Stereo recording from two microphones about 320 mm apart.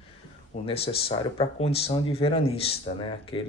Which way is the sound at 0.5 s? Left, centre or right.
Centre.